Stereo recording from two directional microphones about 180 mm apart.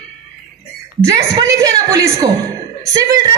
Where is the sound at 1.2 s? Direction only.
15° right (ahead or behind).